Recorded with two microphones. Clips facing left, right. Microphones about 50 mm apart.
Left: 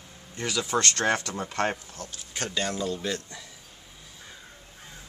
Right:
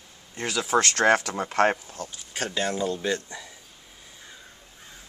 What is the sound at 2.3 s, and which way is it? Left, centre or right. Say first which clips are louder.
Speech: right 2 dB; centre.